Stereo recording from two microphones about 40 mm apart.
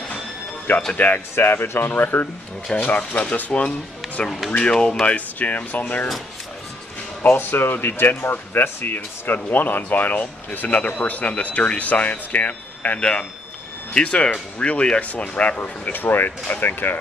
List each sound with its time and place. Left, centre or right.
0.9 s speech: left
1.3 s speech: left
2.7 s speech: left
3.1 s speech: left
4.5 s speech: left
5.0 s speech: left
7.2 s speech: left
8.1 s speech: left
15.9 s speech: left